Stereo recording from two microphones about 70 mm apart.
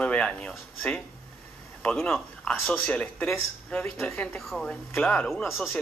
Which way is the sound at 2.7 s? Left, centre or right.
Centre.